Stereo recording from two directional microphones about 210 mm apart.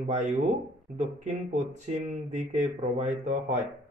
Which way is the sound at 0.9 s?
35° right (ahead or behind).